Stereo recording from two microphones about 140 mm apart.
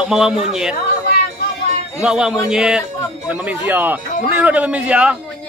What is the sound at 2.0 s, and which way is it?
A man's voice, 5° right (ahead or behind).